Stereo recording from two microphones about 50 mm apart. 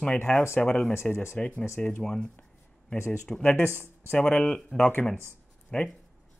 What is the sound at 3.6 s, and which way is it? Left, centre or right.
Speech, left.